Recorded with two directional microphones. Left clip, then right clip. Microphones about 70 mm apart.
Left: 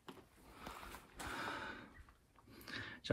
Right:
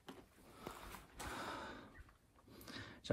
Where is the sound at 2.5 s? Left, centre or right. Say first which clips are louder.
Left 5 dB; centre.